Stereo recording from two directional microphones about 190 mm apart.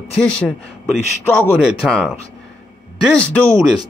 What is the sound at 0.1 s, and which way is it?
A man's voice, 5° left (ahead or behind).